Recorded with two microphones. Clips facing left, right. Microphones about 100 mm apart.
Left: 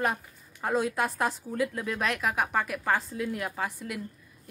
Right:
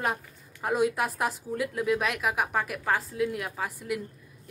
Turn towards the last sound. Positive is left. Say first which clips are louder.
# right 1 dB
turn(degrees=-5)  # may be behind; listen again after turning